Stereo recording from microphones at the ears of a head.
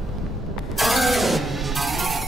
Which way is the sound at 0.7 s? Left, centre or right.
Centre.